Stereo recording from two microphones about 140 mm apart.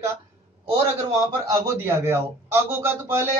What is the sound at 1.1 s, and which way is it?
A man's voice, 25° right (ahead or behind).